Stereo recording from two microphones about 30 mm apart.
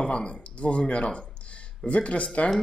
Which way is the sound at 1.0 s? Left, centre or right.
Left.